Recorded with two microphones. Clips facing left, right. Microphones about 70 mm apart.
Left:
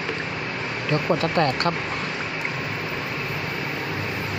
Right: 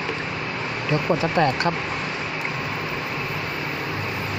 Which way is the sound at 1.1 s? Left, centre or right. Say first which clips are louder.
Right 1 dB; centre.